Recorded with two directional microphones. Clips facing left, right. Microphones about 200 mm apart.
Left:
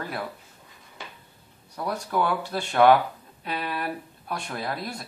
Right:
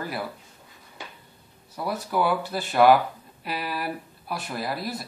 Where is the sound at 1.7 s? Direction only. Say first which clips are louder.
Even; 5° right (ahead or behind).